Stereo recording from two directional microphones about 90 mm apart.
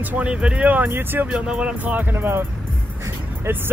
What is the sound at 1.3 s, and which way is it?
Speech, 10° right (ahead or behind).